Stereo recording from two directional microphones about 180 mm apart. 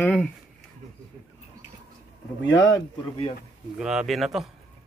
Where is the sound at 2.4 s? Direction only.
90° left.